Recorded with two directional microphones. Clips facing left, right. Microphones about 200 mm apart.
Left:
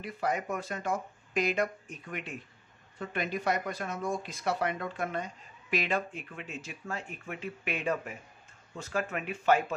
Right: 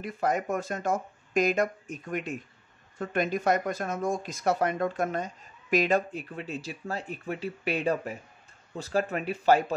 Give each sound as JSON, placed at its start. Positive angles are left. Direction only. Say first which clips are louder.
{"t": 0.0, "sound": "speech", "louder": "right 4 dB", "side_deg": -45}